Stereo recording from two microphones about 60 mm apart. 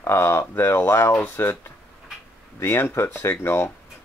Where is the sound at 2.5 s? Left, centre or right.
Left.